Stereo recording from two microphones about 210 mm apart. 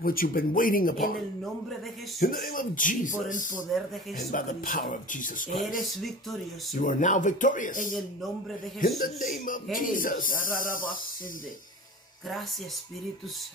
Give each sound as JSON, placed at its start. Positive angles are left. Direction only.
{"t": 0.0, "sound": "speech", "side_deg": 45}
{"t": 2.1, "sound": "speech", "side_deg": 45}
{"t": 6.8, "sound": "speech", "side_deg": 40}